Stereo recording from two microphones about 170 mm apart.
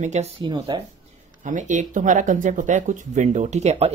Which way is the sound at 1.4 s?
45° right (ahead or behind).